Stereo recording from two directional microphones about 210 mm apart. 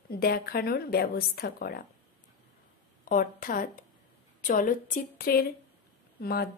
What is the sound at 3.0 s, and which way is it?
A woman's voice, 40° left (ahead or behind).